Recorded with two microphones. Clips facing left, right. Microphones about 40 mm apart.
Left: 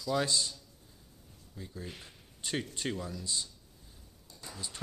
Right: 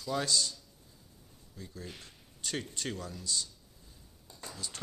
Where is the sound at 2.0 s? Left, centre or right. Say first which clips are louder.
Even; centre.